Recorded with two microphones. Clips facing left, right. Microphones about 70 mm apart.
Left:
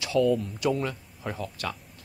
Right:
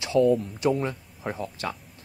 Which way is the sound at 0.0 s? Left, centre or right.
Right.